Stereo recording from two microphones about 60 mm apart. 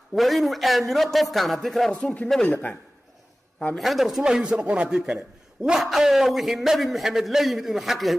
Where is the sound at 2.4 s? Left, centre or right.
Left.